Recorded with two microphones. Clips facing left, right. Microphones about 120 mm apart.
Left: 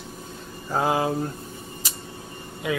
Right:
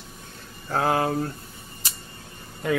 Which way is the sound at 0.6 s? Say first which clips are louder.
Even; 10° left (ahead or behind).